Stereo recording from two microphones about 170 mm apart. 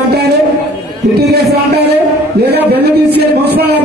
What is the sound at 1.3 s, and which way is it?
Speech, 70° right (ahead or behind).